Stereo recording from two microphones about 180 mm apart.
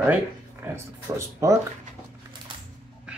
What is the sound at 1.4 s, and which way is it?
Speech, 15° right (ahead or behind).